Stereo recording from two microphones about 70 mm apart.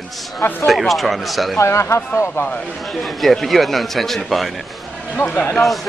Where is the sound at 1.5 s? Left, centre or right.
Left.